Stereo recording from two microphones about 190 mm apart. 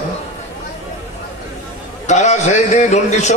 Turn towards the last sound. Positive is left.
turn(degrees=40)  # may be behind; listen again after turning